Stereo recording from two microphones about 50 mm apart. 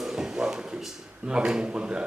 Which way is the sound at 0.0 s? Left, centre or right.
Centre.